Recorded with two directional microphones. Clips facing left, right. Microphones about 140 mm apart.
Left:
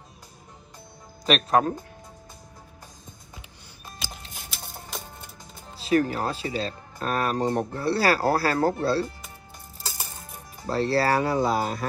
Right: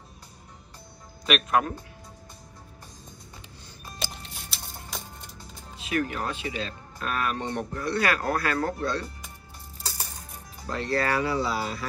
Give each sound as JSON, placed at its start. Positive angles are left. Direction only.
{"t": 1.2, "sound": "speech", "side_deg": 35}
{"t": 5.8, "sound": "speech", "side_deg": 35}
{"t": 10.7, "sound": "speech", "side_deg": 35}